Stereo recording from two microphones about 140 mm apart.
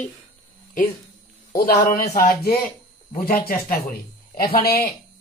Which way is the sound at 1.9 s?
80° left.